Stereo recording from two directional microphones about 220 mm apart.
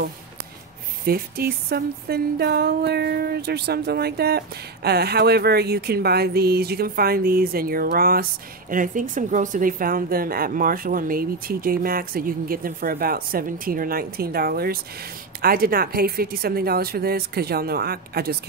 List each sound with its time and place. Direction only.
1.0 s speech: 45° right (ahead or behind)